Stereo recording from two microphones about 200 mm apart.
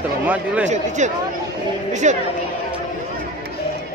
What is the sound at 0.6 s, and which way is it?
Speech, 35° right (ahead or behind).